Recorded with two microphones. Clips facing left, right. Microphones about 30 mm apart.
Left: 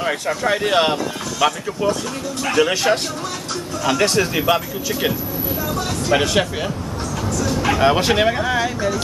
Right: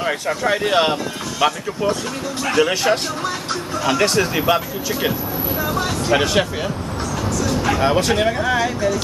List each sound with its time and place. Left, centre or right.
0.0 s speech: centre
6.1 s speech: centre
7.8 s speech: centre
8.5 s speech: centre